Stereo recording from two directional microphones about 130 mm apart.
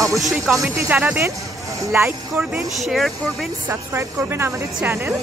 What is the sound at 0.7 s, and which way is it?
A woman's voice, 15° right (ahead or behind).